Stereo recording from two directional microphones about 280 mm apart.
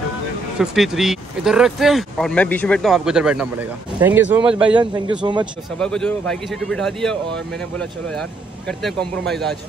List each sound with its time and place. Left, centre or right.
0.6 s speech: centre
4.7 s a man's voice: centre
5.8 s speech: centre